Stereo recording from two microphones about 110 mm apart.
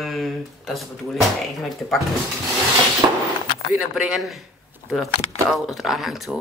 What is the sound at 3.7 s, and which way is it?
Speech, centre (ahead or behind).